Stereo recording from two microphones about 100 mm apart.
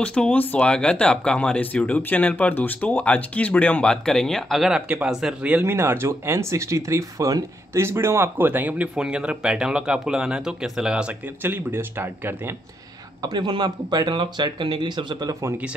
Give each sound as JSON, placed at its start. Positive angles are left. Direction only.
{"t": 0.0, "sound": "speech", "side_deg": 10}
{"t": 5.6, "sound": "speech", "side_deg": -25}
{"t": 13.2, "sound": "speech", "side_deg": -45}